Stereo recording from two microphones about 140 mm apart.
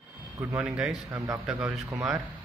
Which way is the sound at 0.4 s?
15° right (ahead or behind).